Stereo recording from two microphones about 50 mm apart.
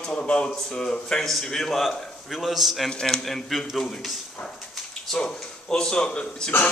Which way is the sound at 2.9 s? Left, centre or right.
Centre.